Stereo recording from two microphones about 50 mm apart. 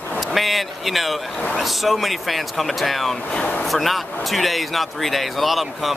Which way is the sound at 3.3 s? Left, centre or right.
Left.